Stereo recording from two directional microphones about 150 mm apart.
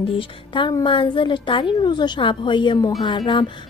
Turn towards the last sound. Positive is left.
turn(degrees=30)  # may be behind; listen again after turning